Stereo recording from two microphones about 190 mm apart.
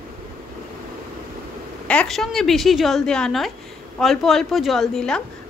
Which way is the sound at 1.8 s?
5° left (ahead or behind).